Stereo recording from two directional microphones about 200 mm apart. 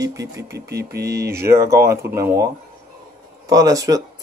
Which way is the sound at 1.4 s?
15° right (ahead or behind).